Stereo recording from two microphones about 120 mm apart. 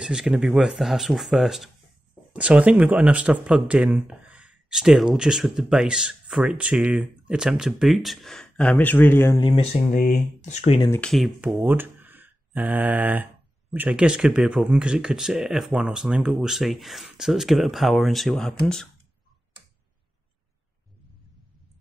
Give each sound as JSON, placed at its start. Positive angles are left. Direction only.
{"t": 0.0, "sound": "speech", "side_deg": -5}
{"t": 9.4, "sound": "speech", "side_deg": 45}
{"t": 9.8, "sound": "speech", "side_deg": 90}
{"t": 11.0, "sound": "speech", "side_deg": 5}
{"t": 11.4, "sound": "speech", "side_deg": -15}